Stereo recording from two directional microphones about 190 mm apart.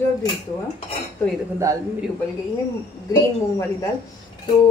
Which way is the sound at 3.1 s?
15° left (ahead or behind).